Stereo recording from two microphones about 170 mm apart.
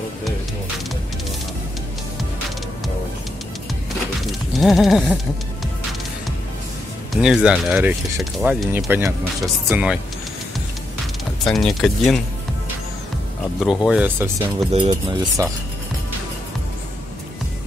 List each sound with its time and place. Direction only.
4.3 s a sound: centre (ahead or behind)
7.1 s speech: 5° right (ahead or behind)
11.4 s speech: centre (ahead or behind)
13.6 s speech: 5° right (ahead or behind)
14.7 s speech: 30° right (ahead or behind)